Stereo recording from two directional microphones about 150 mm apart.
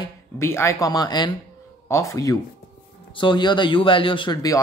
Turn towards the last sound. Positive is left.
turn(degrees=30)  # may be behind; listen again after turning